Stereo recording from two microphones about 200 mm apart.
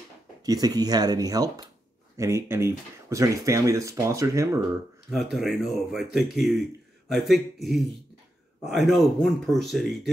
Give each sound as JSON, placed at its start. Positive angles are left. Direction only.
{"t": 0.5, "sound": "speech", "side_deg": -20}
{"t": 5.1, "sound": "speech", "side_deg": 0}
{"t": 8.6, "sound": "speech", "side_deg": 0}